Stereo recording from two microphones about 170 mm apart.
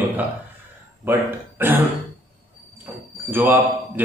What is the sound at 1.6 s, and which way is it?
Speech, 10° right (ahead or behind).